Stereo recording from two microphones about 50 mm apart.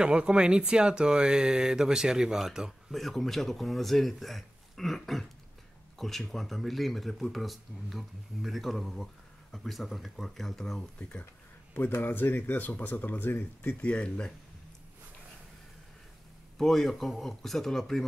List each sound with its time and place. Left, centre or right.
0.0 s speech: centre
2.9 s speech: centre
11.0 s speech: left
11.7 s speech: left
16.5 s speech: centre